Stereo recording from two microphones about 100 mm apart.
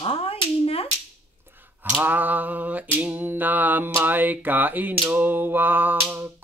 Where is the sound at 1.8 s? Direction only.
20° right (ahead or behind).